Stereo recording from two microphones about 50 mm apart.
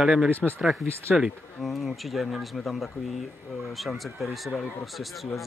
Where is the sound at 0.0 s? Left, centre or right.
Centre.